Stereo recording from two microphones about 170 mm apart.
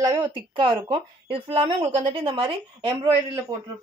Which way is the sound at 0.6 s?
30° right (ahead or behind).